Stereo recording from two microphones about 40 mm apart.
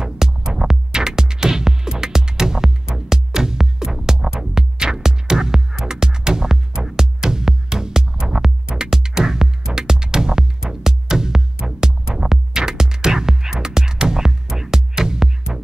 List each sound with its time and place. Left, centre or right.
0.0 s music: centre